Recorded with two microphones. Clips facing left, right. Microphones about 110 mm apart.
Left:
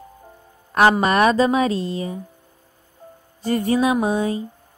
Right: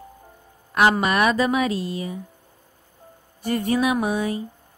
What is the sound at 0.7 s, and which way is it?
A woman's voice, 35° left (ahead or behind).